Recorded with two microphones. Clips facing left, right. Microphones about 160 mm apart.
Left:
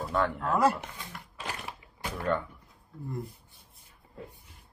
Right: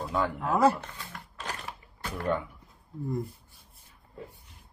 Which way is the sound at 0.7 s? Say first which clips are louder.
Even; 10° left (ahead or behind).